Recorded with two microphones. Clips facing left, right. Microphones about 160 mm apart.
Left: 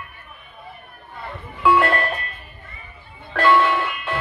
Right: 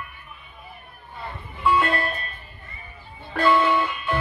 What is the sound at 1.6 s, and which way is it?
Music, 85° left.